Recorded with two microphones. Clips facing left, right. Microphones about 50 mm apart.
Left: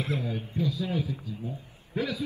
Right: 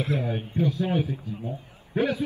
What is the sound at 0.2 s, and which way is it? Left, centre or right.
A man's voice, right.